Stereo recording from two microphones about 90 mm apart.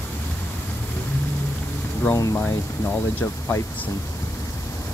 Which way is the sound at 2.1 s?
35° left (ahead or behind).